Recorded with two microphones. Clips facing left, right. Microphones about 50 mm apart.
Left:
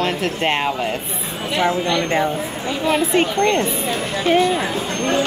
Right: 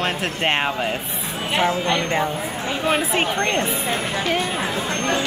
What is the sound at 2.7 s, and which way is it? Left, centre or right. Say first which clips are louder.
A woman's voice: left 2 dB; right.